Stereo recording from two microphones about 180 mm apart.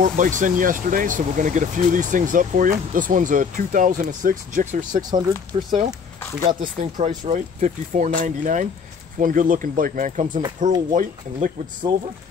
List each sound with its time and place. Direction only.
0.0 s speech: 45° right (ahead or behind)
5.5 s speech: 35° right (ahead or behind)